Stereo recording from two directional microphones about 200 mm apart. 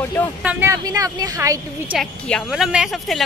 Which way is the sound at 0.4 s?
10° right (ahead or behind).